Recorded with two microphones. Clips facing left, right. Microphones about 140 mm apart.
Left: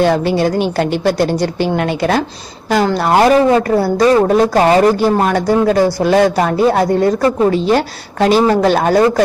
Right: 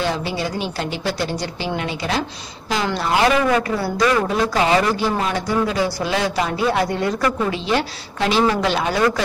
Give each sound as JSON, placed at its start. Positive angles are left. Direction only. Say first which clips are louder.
{"t": 0.0, "sound": "a woman's voice", "louder": "left 10 dB", "side_deg": 55}
{"t": 7.5, "sound": "speech", "louder": "left 8 dB", "side_deg": 45}